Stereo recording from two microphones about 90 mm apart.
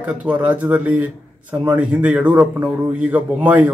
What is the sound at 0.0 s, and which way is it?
Speech, 15° right (ahead or behind).